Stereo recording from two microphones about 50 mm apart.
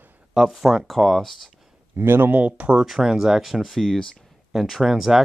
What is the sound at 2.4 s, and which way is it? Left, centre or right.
Speech, right.